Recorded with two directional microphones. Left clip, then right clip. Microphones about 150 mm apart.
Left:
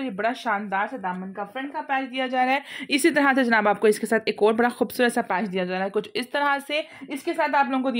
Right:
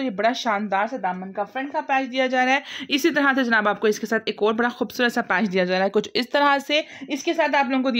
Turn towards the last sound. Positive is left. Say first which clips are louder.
# right 1 dB
turn(degrees=-30)  # may be behind; listen again after turning